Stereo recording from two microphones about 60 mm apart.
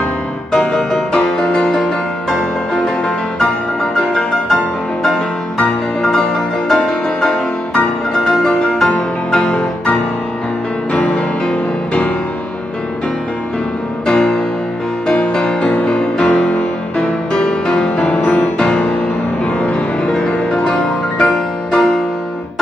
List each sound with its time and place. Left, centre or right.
0.5 s music: centre
4.1 s music: centre
10.9 s music: left
14.0 s music: centre